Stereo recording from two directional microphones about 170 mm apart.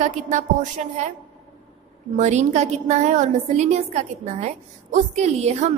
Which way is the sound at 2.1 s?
40° right (ahead or behind).